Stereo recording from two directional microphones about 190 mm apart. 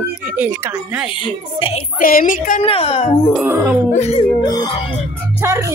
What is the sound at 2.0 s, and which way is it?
Speech, 45° left (ahead or behind).